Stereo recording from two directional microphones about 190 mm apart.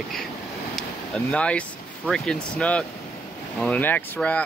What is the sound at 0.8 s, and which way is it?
Vehicle, 5° left (ahead or behind).